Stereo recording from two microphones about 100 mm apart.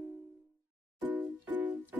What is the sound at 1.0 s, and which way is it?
Music, 15° right (ahead or behind).